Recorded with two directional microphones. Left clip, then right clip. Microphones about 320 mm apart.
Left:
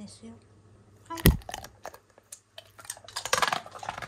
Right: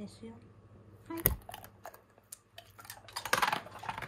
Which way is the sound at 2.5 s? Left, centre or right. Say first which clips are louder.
Left 6 dB; centre.